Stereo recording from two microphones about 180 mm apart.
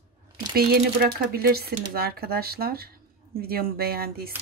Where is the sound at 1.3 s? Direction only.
55° right (ahead or behind).